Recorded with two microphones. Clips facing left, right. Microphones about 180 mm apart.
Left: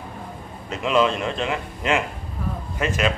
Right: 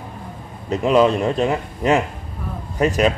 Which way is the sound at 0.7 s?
40° right (ahead or behind).